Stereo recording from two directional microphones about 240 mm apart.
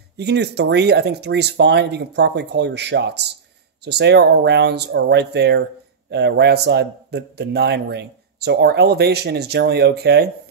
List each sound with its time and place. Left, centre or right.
0.2 s speech: right